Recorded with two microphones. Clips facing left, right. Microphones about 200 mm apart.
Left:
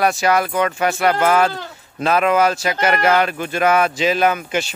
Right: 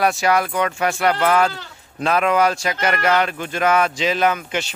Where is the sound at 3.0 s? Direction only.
45° left (ahead or behind).